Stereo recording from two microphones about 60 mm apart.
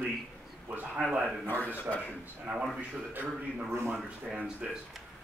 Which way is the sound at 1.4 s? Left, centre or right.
Left.